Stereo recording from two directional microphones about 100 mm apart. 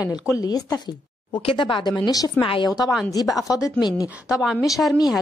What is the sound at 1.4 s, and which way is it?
Speech, 55° left (ahead or behind).